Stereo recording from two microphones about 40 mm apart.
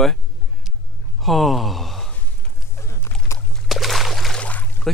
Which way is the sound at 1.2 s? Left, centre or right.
Centre.